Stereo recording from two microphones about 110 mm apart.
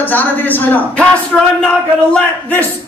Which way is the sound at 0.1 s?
15° left (ahead or behind).